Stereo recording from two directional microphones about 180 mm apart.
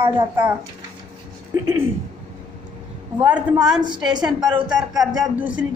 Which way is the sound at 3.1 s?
10° right (ahead or behind).